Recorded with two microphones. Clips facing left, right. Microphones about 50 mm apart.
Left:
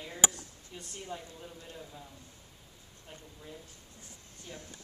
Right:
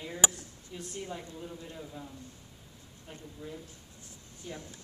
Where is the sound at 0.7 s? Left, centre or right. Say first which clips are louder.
Right 3 dB; centre.